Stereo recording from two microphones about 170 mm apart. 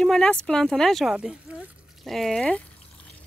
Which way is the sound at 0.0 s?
5° left (ahead or behind).